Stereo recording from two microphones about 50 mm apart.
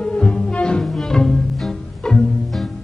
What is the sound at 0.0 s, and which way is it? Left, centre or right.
Music, centre.